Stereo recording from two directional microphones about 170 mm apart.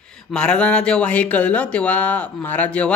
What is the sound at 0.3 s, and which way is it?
Speech, 5° left (ahead or behind).